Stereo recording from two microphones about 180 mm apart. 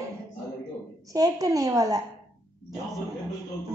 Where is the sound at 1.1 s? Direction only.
20° right (ahead or behind).